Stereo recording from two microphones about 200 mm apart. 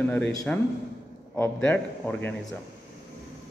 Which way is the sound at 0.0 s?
10° left (ahead or behind).